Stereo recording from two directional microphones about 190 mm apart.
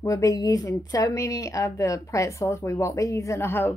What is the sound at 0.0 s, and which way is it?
Speech, 15° left (ahead or behind).